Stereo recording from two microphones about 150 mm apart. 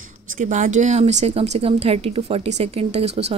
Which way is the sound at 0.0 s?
55° right (ahead or behind).